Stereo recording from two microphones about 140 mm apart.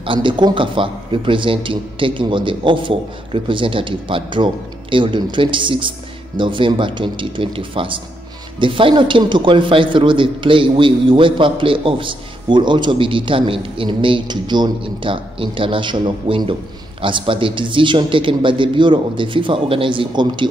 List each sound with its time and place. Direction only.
0.0 s speech: 35° right (ahead or behind)